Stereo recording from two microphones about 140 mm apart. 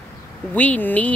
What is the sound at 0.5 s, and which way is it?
Speech, 10° left (ahead or behind).